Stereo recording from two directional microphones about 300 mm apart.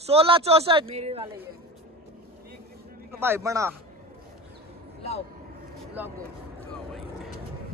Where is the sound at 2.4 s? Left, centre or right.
Right.